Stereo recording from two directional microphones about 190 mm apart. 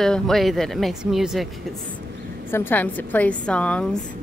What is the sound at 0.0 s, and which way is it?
Speech, centre (ahead or behind).